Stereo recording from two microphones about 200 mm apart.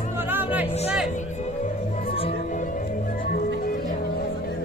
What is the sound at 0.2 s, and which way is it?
Music, 10° right (ahead or behind).